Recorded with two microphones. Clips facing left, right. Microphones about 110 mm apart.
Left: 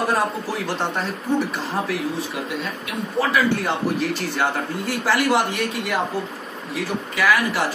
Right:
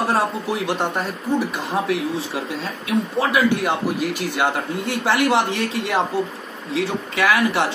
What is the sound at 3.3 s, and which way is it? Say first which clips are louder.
Speech: right 4 dB; 10° right (ahead or behind).